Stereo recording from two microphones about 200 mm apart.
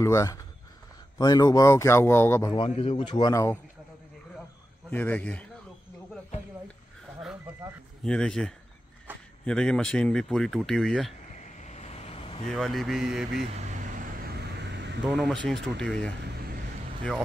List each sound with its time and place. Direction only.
0.0 s a man's voice: 15° left (ahead or behind)
2.5 s a man's voice: 25° left (ahead or behind)
4.9 s a man's voice: 10° left (ahead or behind)
8.0 s speech: 5° left (ahead or behind)
11.3 s vehicle: 40° left (ahead or behind)
12.4 s speech: centre (ahead or behind)
13.7 s vehicle: 45° right (ahead or behind)
15.0 s speech: centre (ahead or behind)